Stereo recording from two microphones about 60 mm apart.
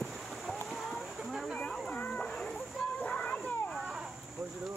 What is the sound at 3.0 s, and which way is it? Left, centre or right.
Children playing, centre.